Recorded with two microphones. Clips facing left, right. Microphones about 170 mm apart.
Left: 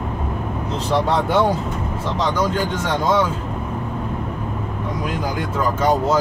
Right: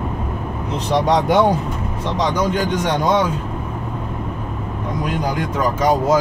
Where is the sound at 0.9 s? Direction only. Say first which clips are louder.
Right 3 dB; 15° right (ahead or behind).